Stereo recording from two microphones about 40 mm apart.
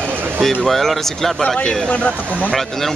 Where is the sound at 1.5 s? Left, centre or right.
Centre.